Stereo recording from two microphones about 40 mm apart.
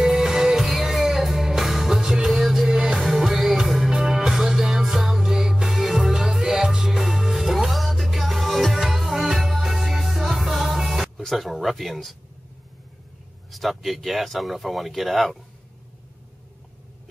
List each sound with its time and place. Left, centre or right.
0.0 s music: centre
11.2 s speech: centre
13.5 s speech: centre